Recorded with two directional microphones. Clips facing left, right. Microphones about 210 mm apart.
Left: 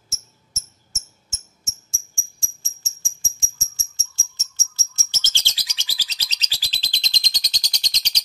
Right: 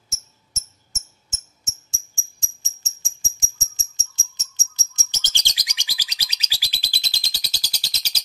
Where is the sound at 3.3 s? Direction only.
20° right (ahead or behind).